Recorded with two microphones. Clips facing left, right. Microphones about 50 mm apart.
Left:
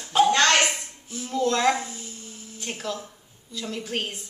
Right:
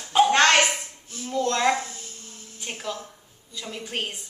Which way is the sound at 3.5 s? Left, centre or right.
Centre.